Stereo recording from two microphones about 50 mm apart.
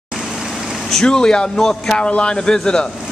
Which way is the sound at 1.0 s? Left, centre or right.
Centre.